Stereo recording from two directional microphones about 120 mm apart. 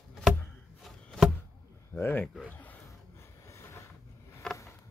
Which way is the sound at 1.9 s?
15° left (ahead or behind).